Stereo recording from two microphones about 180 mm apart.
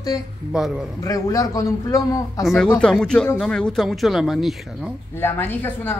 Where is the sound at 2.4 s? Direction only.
Centre (ahead or behind).